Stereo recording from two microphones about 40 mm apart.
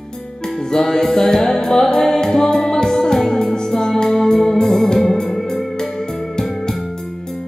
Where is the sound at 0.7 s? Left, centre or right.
Centre.